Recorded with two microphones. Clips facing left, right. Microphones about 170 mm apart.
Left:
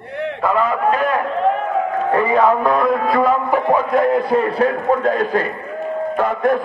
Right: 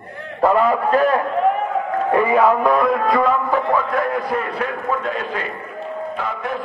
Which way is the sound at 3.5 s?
20° left (ahead or behind).